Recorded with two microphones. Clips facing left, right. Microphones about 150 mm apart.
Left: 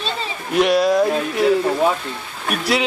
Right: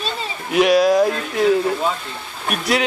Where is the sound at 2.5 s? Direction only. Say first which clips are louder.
Even; centre (ahead or behind).